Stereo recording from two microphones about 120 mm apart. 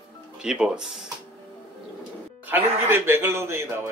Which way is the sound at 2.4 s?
15° right (ahead or behind).